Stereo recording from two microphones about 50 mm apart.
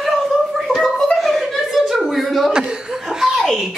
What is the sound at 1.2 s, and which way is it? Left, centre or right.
Chuckle, centre.